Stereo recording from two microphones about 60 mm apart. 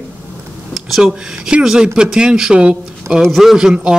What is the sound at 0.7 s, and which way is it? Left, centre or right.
A man's voice, centre.